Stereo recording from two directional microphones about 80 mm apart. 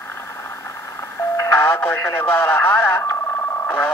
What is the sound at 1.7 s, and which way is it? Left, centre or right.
Speech, left.